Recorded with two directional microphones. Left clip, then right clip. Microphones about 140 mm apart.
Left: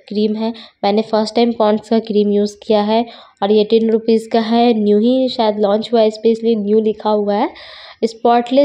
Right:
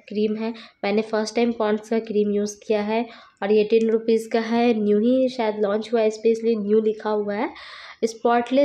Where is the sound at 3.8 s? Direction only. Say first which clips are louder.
Left 6 dB; 30° left (ahead or behind).